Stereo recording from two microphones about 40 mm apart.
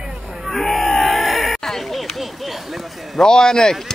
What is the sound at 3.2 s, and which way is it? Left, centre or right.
Speech, centre.